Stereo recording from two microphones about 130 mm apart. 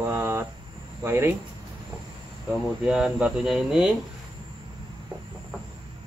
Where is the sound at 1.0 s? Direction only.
20° right (ahead or behind).